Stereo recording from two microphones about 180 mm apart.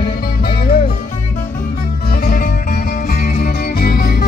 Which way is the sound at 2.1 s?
50° left (ahead or behind).